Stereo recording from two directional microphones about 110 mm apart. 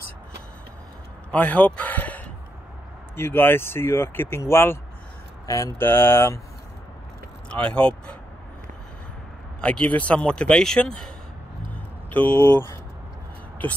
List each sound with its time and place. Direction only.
1.3 s speech: 15° left (ahead or behind)
7.4 s speech: 10° left (ahead or behind)
9.6 s speech: 10° left (ahead or behind)
12.3 s speech: 20° left (ahead or behind)